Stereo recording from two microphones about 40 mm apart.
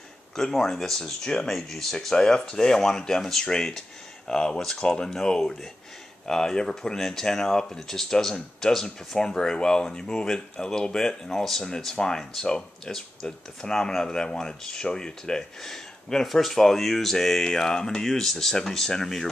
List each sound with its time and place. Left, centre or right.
0.4 s speech: centre